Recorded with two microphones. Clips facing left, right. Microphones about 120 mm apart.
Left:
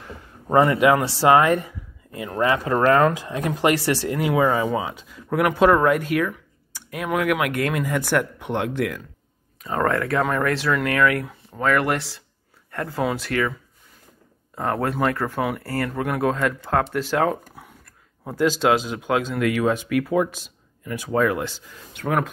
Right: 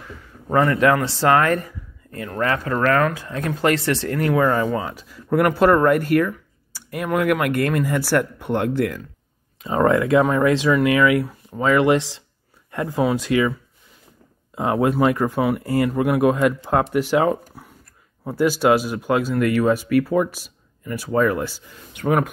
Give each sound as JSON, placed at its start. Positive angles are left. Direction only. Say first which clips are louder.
{"t": 0.5, "sound": "speech", "louder": "left 1 dB", "side_deg": 20}
{"t": 0.7, "sound": "speech", "louder": "even", "side_deg": 10}
{"t": 9.8, "sound": "speech", "louder": "right 5 dB", "side_deg": -15}